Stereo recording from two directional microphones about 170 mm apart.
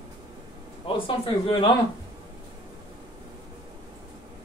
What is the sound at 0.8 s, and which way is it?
Speech, 30° left (ahead or behind).